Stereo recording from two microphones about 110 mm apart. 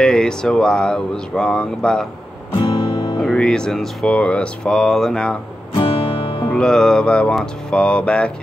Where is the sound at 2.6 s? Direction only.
50° left (ahead or behind).